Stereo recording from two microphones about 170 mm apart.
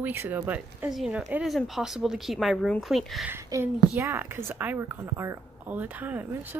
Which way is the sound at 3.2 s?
15° right (ahead or behind).